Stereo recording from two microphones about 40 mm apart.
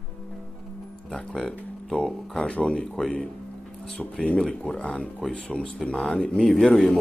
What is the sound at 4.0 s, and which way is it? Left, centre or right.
Speech, left.